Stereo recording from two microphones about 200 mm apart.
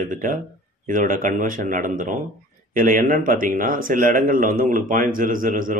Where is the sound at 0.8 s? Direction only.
40° right (ahead or behind).